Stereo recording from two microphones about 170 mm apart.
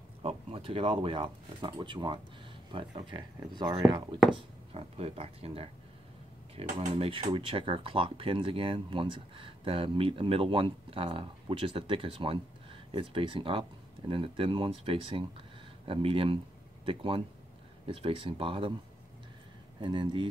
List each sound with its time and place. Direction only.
0.2 s speech: 35° right (ahead or behind)
19.8 s speech: 30° right (ahead or behind)